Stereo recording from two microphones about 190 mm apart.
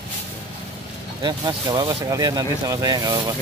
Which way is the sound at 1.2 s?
20° right (ahead or behind).